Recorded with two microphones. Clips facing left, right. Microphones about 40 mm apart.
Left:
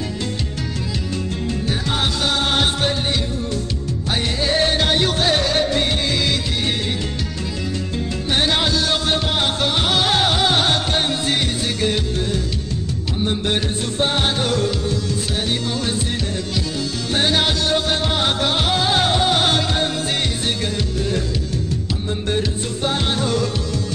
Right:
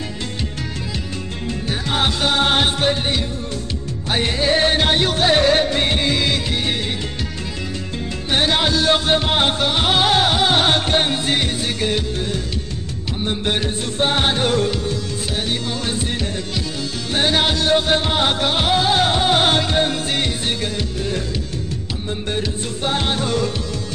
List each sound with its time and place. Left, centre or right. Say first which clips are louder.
1.7 s music: right 3 dB; right
4.1 s music: right 3 dB; right
8.3 s music: right 1 dB; centre
10.6 s music: right 2 dB; right
13.9 s music: right 2 dB; right
17.1 s music: right 1 dB; centre
19.1 s music: right 1 dB; centre
22.8 s music: even; right